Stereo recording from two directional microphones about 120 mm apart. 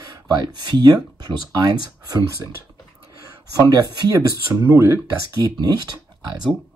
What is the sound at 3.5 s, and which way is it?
Speech, 30° right (ahead or behind).